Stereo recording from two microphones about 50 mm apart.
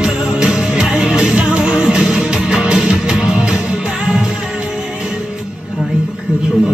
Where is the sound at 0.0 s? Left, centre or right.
Centre.